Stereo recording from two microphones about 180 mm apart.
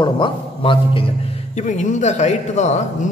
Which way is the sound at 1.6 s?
40° left (ahead or behind).